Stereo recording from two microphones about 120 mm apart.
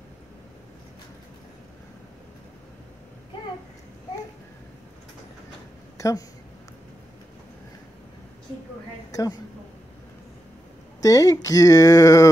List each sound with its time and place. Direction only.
5.9 s a sound: 25° left (ahead or behind)
9.1 s a woman's voice: 30° left (ahead or behind)
11.0 s speech: 30° left (ahead or behind)